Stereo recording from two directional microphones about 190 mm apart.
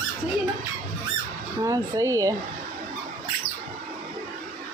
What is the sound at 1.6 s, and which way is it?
Speech, 15° right (ahead or behind).